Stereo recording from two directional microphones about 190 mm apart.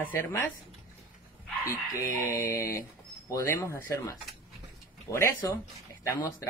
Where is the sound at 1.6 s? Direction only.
15° left (ahead or behind).